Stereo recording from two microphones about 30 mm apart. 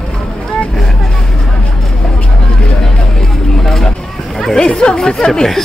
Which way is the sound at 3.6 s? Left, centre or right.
Centre.